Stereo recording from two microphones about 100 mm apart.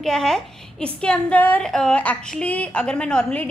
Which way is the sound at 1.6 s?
5° left (ahead or behind).